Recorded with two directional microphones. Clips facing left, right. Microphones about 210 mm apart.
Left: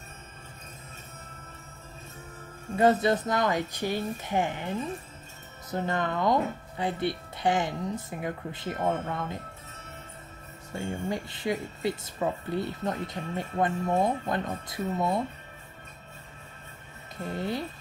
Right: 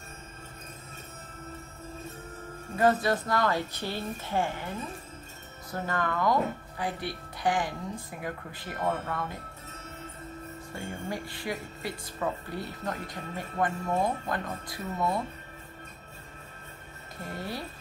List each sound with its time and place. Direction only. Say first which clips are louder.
2.7 s speech: left 2 dB; 20° left (ahead or behind)
10.7 s speech: left 5 dB; 20° left (ahead or behind)
17.3 s speech: left 5 dB; 20° left (ahead or behind)